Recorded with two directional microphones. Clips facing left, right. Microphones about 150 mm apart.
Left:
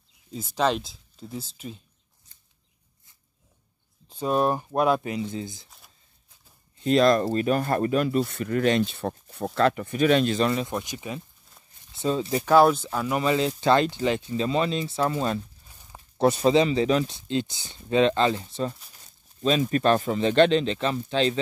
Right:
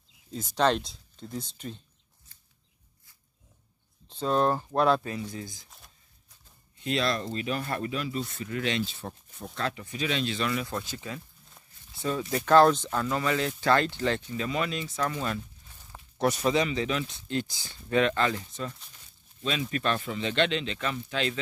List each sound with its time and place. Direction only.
0.3 s speech: 5° left (ahead or behind)
4.1 s speech: 10° left (ahead or behind)
6.8 s speech: 45° left (ahead or behind)
10.7 s speech: 15° left (ahead or behind)
12.4 s speech: 10° left (ahead or behind)
13.2 s speech: 20° left (ahead or behind); by 17.2 s 35° left (ahead or behind)
17.3 s speech: 20° left (ahead or behind)